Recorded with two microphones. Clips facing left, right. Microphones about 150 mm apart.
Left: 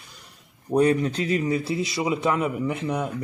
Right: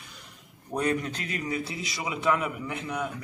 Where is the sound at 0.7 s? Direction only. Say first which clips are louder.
Left 8 dB; 35° left (ahead or behind).